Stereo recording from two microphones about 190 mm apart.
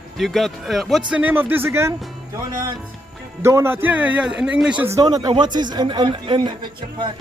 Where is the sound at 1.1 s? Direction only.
10° right (ahead or behind).